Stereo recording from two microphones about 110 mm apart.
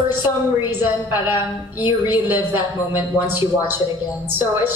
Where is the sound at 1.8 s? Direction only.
15° right (ahead or behind).